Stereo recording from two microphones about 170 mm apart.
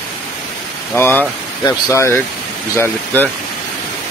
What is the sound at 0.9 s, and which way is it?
Speech, 10° left (ahead or behind).